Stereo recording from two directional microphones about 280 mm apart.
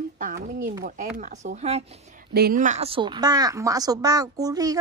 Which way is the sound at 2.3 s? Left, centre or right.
Right.